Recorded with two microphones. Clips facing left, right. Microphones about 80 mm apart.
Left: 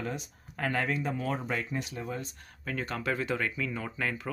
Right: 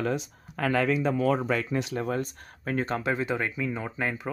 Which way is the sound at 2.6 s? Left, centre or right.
Right.